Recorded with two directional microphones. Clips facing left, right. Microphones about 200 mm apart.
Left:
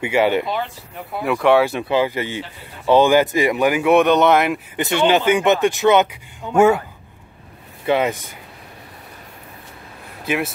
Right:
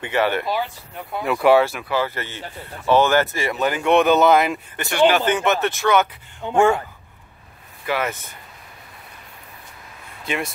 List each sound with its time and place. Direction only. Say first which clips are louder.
0.0 s speech: left 4 dB; 15° left (ahead or behind)
0.5 s speech: even; centre (ahead or behind)
1.7 s speech: left 5 dB; 20° left (ahead or behind); by 4.6 s centre (ahead or behind)
4.7 s speech: even; 20° left (ahead or behind)
6.5 s speech: left 3 dB; 5° left (ahead or behind)
7.8 s speech: left 6 dB; 20° left (ahead or behind)
10.2 s speech: left 4 dB; 5° left (ahead or behind)